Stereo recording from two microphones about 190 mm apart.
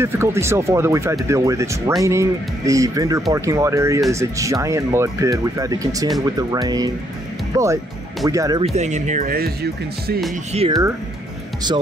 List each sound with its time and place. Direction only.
0.0 s speech: 15° right (ahead or behind)
8.6 s speech: 35° right (ahead or behind); by 10.2 s 55° right (ahead or behind)
10.5 s speech: 30° right (ahead or behind)